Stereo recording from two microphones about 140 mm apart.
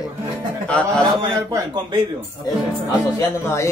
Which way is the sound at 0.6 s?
10° left (ahead or behind).